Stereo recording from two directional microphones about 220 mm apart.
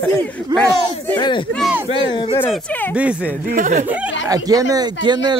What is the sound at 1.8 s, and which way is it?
Speech, 25° left (ahead or behind).